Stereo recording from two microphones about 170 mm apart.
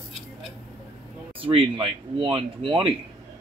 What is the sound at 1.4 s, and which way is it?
Speech, 30° right (ahead or behind).